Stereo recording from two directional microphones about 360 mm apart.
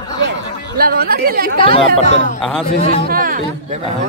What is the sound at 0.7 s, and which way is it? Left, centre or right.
Speech, right.